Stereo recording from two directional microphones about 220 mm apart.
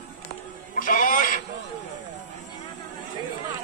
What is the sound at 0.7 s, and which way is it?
Music, 40° left (ahead or behind).